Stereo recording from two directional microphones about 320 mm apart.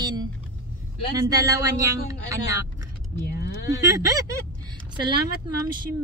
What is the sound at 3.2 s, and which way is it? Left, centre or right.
Speech, left.